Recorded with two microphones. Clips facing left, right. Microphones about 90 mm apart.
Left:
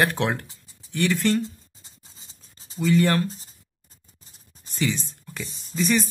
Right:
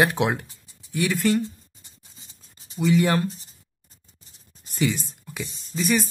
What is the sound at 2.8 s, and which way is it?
Speech, 10° right (ahead or behind).